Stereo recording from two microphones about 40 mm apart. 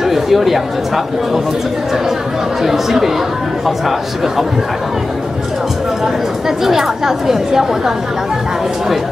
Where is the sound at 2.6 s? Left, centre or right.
Centre.